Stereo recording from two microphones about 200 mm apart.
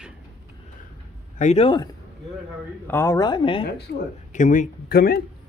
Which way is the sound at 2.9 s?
10° left (ahead or behind).